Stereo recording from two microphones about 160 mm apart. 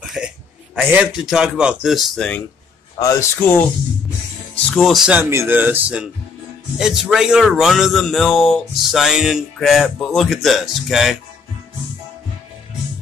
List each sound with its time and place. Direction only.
0.0 s a sound: centre (ahead or behind)
0.7 s speech: 5° right (ahead or behind)
3.0 s speech: 20° left (ahead or behind)
4.6 s speech: centre (ahead or behind)
5.2 s speech: 15° right (ahead or behind)